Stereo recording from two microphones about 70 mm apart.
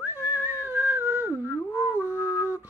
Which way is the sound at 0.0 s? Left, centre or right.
Right.